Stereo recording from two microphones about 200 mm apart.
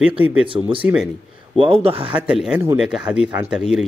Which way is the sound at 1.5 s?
30° right (ahead or behind).